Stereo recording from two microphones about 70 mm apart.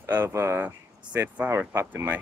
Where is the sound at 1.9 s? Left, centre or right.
Right.